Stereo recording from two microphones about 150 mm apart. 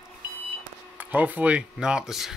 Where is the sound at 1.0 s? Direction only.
10° right (ahead or behind).